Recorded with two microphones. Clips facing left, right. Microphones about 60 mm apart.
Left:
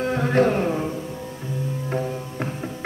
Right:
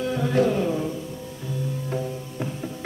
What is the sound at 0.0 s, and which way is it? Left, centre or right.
Music, left.